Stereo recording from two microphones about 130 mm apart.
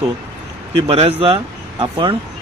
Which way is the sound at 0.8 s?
45° right (ahead or behind).